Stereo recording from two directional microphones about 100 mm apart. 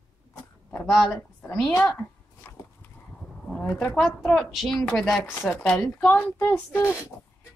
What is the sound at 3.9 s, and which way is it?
Speech, centre (ahead or behind).